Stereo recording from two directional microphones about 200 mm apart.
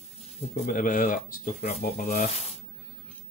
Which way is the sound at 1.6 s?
30° left (ahead or behind).